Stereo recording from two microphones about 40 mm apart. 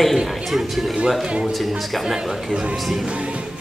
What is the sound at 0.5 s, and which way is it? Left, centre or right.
Speech, centre.